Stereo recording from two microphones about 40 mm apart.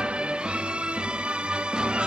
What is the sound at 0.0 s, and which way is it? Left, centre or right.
Music, right.